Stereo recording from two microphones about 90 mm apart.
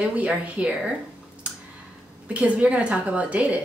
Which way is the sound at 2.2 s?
15° right (ahead or behind).